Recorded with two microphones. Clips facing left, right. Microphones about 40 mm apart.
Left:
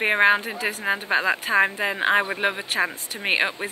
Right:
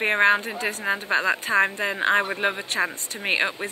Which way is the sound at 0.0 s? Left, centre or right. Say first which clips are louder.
Left 1 dB; centre.